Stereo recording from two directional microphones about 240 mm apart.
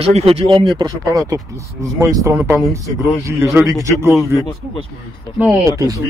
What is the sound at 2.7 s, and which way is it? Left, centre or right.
Speech, centre.